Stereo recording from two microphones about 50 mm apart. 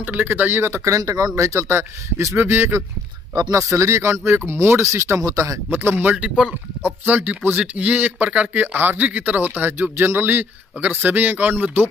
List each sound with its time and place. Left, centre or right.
0.0 s speech: right
0.6 s speech: right
3.5 s speech: right
5.7 s speech: right
6.1 s speech: centre
6.8 s a man's voice: right
9.5 s speech: right